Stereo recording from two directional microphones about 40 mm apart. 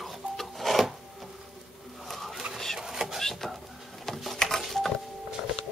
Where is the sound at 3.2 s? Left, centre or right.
Centre.